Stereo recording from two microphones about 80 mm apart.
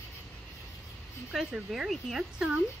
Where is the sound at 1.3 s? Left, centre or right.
Centre.